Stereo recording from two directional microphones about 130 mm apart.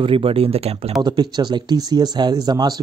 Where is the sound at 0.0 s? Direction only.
45° right (ahead or behind).